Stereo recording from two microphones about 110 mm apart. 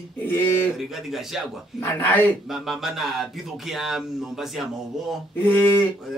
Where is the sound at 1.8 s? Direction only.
15° left (ahead or behind).